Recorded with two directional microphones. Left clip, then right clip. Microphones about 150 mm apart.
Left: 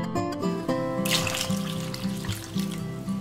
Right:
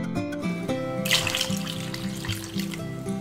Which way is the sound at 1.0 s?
Centre (ahead or behind).